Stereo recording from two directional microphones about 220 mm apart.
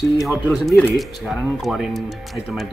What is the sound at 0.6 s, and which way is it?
Speech, centre (ahead or behind).